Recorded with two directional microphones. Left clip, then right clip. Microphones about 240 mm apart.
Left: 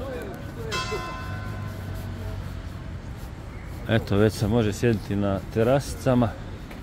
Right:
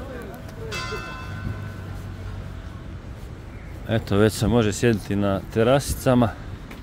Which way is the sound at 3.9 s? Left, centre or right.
Centre.